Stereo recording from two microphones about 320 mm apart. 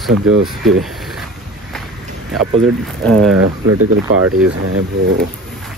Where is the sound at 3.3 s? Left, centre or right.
Right.